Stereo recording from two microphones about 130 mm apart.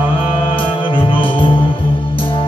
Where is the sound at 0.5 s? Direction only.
40° left (ahead or behind).